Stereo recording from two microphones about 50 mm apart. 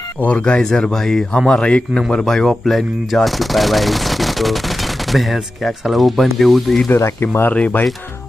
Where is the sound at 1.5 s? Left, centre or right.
Centre.